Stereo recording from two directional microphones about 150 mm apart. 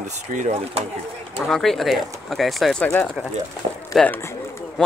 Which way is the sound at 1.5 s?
Centre (ahead or behind).